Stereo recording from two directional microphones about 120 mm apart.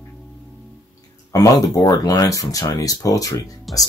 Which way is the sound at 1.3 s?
30° left (ahead or behind).